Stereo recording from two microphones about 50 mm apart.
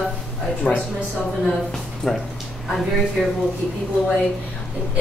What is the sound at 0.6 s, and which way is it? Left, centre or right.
Speech, centre.